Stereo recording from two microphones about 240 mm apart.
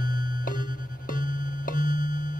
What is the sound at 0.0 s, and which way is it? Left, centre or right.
Music, left.